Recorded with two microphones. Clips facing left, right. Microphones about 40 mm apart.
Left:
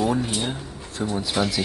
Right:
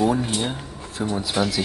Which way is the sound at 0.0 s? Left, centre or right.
Centre.